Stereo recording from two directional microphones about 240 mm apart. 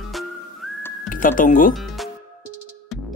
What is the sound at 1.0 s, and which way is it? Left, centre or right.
Speech, left.